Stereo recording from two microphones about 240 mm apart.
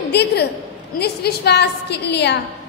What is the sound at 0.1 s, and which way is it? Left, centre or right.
A woman's voice, left.